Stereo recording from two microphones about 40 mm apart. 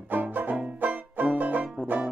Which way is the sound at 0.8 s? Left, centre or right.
Right.